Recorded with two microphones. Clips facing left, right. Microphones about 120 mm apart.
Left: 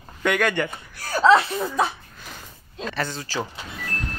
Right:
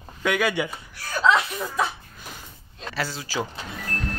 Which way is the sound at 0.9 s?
40° left (ahead or behind).